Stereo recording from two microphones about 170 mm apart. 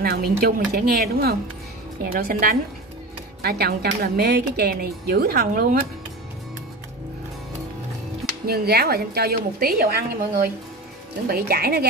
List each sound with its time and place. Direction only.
0.0 s a woman's voice: 70° right (ahead or behind)
8.5 s a woman's voice: 65° right (ahead or behind)